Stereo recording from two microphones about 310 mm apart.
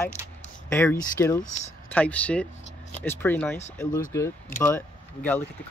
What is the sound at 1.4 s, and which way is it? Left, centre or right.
Speech, left.